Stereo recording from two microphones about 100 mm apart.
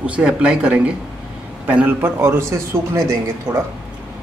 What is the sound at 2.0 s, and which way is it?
Speech, 25° right (ahead or behind).